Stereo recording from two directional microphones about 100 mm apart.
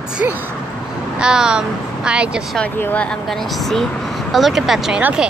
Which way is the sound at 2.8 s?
20° left (ahead or behind).